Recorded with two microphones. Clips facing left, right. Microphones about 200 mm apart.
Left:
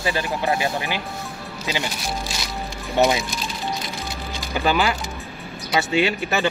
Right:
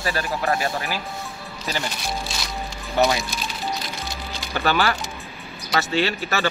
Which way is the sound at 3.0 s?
20° left (ahead or behind).